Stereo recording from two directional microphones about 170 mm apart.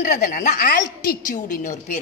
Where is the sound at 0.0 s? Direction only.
50° left (ahead or behind).